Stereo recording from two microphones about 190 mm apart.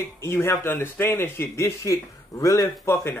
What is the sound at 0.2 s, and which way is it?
Speech, 15° left (ahead or behind).